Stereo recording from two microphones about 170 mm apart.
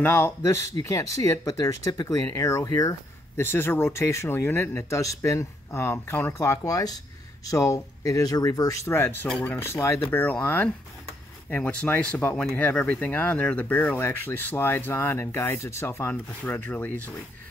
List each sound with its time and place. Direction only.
0.0 s speech: 15° left (ahead or behind)